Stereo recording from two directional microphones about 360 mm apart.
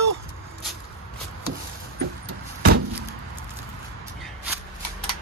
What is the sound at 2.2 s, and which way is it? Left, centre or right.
Keys jangling, right.